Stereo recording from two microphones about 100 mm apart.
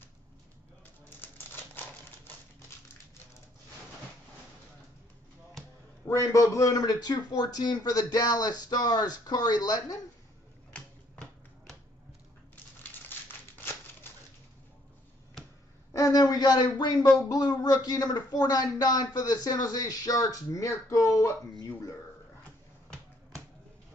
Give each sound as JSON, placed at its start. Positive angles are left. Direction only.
{"t": 1.5, "sound": "typewriter", "side_deg": 20}
{"t": 6.0, "sound": "speech", "side_deg": 30}
{"t": 10.7, "sound": "typewriter", "side_deg": 10}
{"t": 15.9, "sound": "a sound", "side_deg": 35}
{"t": 17.3, "sound": "speech", "side_deg": 40}